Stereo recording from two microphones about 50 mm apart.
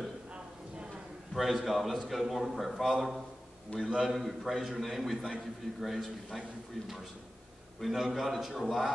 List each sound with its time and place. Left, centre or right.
1.3 s a man's voice: centre
3.7 s a man's voice: left
4.1 s a man's voice: centre
7.8 s a man's voice: centre